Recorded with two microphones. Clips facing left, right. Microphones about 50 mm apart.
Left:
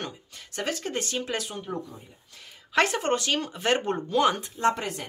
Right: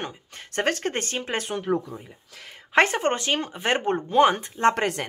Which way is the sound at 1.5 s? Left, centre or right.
Right.